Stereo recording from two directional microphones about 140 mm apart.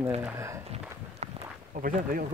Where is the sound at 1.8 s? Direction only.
80° right.